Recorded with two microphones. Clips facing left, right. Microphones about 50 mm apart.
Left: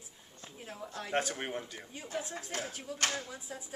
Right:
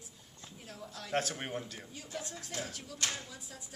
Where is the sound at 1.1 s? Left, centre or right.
Centre.